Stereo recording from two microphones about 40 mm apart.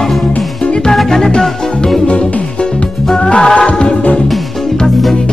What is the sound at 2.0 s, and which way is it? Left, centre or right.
Music, left.